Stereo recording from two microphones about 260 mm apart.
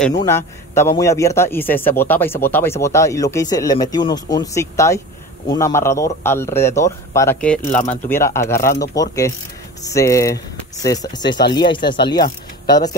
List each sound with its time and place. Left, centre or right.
0.2 s speech: centre